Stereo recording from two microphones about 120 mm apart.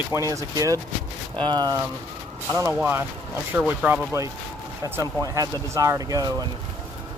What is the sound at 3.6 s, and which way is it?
Speech, 10° right (ahead or behind).